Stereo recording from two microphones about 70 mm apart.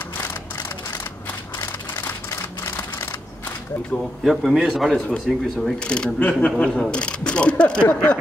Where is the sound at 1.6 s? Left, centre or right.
Left.